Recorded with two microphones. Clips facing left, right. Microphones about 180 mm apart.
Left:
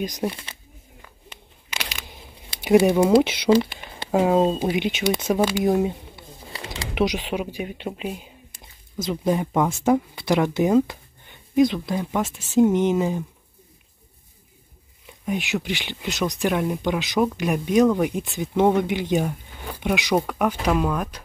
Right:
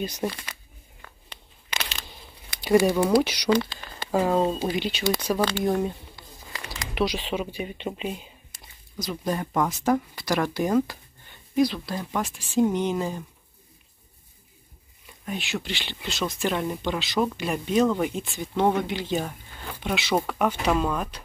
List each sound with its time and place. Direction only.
0.0 s speech: 15° left (ahead or behind)
1.0 s a sound: 15° left (ahead or behind)
2.8 s speech: 25° left (ahead or behind)
7.0 s speech: 15° left (ahead or behind)
8.9 s speech: 25° left (ahead or behind)
9.3 s speech: 10° left (ahead or behind)
9.8 s speech: 25° left (ahead or behind)
15.2 s speech: 15° left (ahead or behind)